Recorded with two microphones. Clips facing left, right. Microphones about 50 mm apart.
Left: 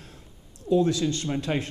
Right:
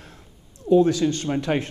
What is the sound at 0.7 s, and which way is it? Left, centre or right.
Speech, right.